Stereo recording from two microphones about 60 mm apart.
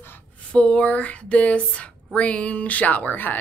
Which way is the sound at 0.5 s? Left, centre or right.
Centre.